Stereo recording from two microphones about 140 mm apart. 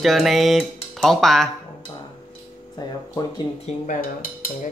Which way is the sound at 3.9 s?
85° left.